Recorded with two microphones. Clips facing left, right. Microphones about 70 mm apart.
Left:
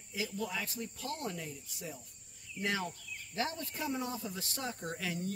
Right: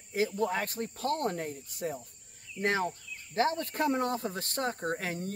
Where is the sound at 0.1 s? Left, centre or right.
Right.